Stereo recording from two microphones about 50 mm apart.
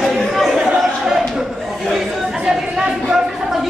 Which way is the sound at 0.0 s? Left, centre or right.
Centre.